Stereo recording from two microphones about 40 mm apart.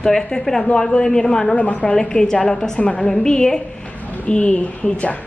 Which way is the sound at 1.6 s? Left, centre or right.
Left.